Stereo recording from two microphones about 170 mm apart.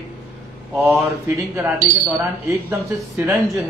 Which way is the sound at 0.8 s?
10° right (ahead or behind).